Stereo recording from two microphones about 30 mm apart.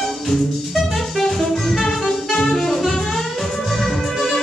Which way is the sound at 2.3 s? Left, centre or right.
Centre.